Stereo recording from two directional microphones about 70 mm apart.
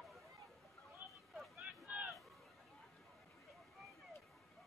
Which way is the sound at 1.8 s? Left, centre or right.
Centre.